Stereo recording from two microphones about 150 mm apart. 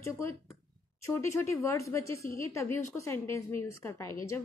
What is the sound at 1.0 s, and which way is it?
A woman's voice, 20° left (ahead or behind).